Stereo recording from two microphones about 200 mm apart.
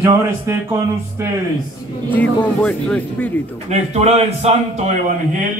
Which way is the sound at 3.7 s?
35° right (ahead or behind).